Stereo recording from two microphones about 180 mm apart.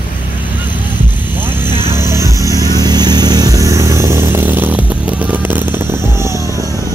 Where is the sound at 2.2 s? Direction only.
20° right (ahead or behind).